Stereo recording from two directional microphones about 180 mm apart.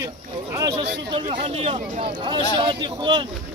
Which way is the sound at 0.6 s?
20° right (ahead or behind).